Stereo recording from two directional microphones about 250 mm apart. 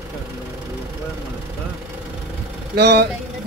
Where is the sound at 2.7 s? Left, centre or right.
Right.